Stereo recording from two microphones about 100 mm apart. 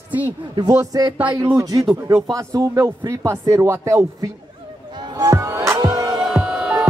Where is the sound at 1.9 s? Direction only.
20° right (ahead or behind).